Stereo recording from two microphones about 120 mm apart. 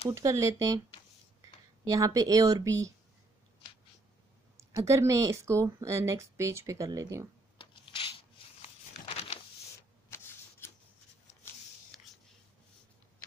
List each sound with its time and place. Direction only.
0.1 s speech: 25° right (ahead or behind)
4.6 s speech: 25° right (ahead or behind)
7.5 s a sound: 45° left (ahead or behind)
10.0 s shuffling cards: 20° left (ahead or behind)